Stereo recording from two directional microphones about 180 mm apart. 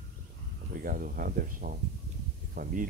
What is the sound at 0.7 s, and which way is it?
Speech, 50° right (ahead or behind).